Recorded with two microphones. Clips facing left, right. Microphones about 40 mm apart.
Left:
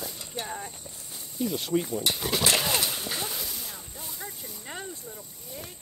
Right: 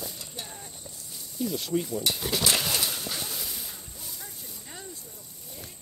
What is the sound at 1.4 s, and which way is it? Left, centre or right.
Speech, centre.